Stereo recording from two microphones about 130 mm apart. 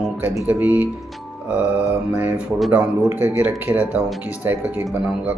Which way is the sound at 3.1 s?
15° right (ahead or behind).